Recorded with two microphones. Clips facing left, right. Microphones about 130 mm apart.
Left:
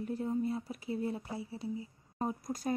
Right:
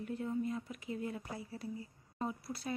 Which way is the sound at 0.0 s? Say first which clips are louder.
Left 3 dB; 35° left (ahead or behind).